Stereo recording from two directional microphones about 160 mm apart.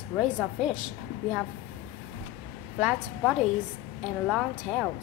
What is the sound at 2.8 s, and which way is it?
A woman's voice, 5° right (ahead or behind).